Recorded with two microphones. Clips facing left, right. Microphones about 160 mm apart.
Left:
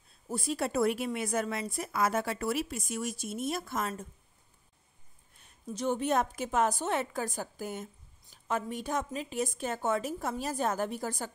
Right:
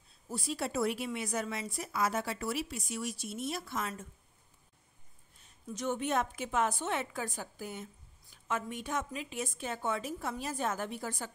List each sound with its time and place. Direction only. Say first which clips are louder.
0.3 s a woman's voice: left 4 dB; 50° left (ahead or behind)
5.7 s a woman's voice: left 4 dB; 35° left (ahead or behind)